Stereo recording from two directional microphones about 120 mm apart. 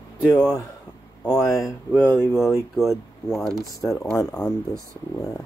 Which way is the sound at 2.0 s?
15° left (ahead or behind).